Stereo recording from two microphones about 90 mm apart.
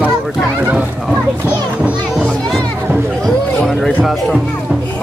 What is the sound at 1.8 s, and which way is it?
Music, 10° right (ahead or behind).